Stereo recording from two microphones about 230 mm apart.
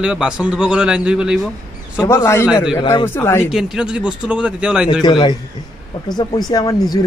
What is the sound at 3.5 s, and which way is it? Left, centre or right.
Speech, centre.